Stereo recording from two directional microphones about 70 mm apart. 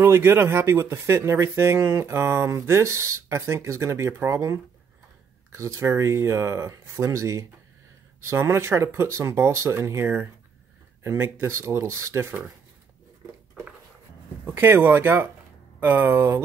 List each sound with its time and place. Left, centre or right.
0.0 s speech: right
14.4 s speech: right